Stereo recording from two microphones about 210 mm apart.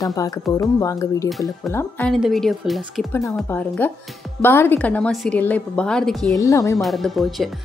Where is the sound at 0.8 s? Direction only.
15° left (ahead or behind).